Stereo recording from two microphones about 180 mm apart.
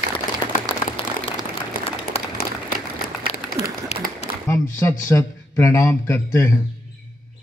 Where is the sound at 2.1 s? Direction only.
35° left (ahead or behind).